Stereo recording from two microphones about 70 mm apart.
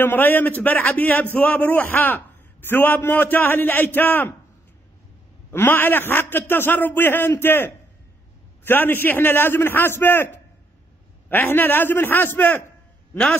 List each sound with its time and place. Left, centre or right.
0.0 s a man's voice: left
5.5 s a man's voice: left